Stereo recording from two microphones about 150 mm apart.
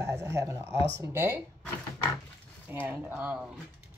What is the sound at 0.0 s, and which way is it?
Speech, 20° right (ahead or behind).